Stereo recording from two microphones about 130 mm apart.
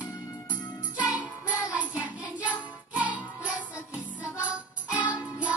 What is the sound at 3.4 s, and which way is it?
Music, 10° right (ahead or behind).